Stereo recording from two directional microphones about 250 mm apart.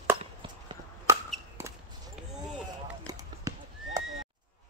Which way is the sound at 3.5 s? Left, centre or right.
Centre.